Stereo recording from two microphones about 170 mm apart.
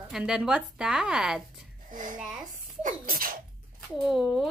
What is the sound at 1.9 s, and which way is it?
Speech, 50° right (ahead or behind).